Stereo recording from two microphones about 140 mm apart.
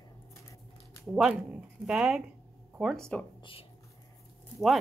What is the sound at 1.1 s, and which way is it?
Speech, 5° right (ahead or behind).